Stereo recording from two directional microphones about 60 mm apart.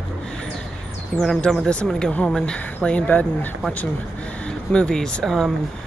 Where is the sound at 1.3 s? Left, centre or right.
Centre.